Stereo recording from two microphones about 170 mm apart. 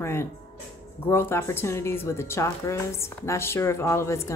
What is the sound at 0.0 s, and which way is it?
A woman's voice, 15° left (ahead or behind).